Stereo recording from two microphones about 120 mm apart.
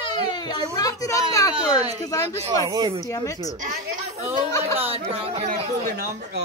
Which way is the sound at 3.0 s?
30° left (ahead or behind).